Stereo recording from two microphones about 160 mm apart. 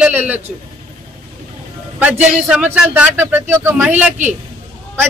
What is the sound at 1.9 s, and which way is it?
Speech, 10° right (ahead or behind).